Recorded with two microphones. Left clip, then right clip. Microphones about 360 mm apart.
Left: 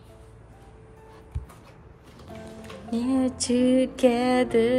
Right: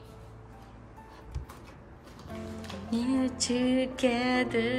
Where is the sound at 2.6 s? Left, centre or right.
Centre.